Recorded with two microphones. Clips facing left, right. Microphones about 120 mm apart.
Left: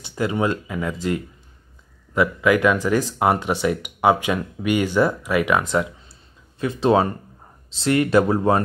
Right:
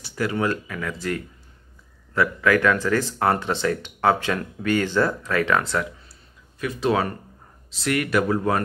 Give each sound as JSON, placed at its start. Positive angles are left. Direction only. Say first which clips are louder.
{"t": 0.0, "sound": "speech", "louder": "left 2 dB", "side_deg": 20}